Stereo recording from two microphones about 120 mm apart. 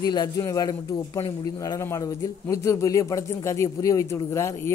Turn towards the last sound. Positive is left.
turn(degrees=25)  # may be behind; listen again after turning